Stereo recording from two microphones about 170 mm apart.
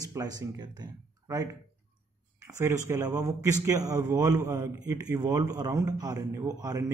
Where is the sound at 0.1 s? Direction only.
20° right (ahead or behind).